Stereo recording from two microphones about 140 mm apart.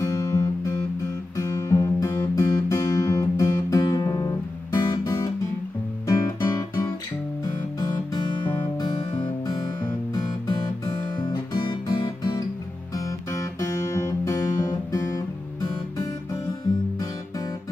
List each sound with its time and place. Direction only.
0.0 s guitar: 20° left (ahead or behind)
4.7 s music: 25° left (ahead or behind)
11.1 s guitar: 30° left (ahead or behind)